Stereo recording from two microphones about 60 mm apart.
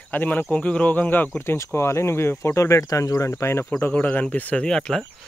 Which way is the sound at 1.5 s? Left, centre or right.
Left.